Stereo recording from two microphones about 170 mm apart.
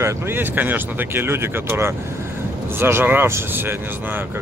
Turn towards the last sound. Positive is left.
turn(degrees=-15)  # may be behind; listen again after turning